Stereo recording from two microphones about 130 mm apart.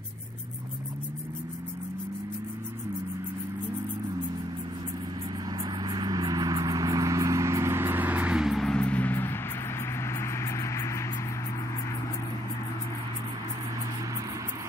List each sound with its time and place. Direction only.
5.9 s vehicle: 30° right (ahead or behind); by 11.0 s 20° left (ahead or behind)